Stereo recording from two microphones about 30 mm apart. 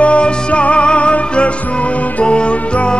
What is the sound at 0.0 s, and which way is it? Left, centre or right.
Music, left.